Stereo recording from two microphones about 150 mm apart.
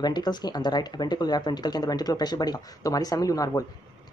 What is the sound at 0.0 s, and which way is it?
Speech, 30° left (ahead or behind).